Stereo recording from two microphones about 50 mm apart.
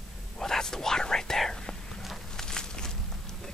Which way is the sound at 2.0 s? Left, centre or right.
Centre.